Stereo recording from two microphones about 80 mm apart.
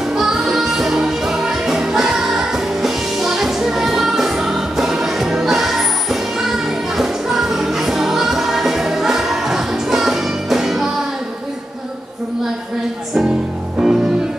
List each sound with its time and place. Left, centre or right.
0.1 s music: centre
13.8 s music: centre